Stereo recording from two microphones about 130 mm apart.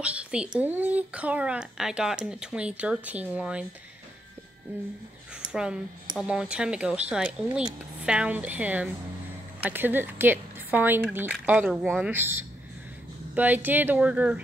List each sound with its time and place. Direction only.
0.0 s speech: 10° right (ahead or behind)
5.3 s a woman's voice: 5° right (ahead or behind)